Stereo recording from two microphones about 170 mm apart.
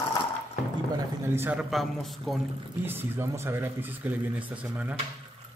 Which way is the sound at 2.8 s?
15° right (ahead or behind).